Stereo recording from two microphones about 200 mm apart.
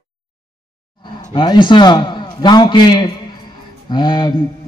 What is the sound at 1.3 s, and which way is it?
A man's voice, 20° left (ahead or behind).